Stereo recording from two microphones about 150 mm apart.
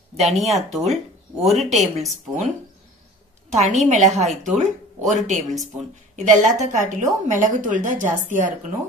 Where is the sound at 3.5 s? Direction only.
50° right (ahead or behind).